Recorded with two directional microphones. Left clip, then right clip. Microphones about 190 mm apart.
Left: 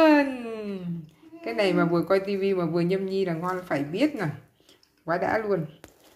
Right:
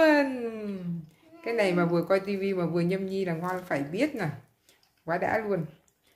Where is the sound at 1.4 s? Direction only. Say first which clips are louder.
Left 2 dB; 15° right (ahead or behind).